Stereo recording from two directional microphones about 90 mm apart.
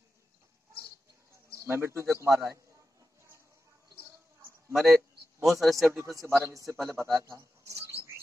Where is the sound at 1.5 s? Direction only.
30° right (ahead or behind).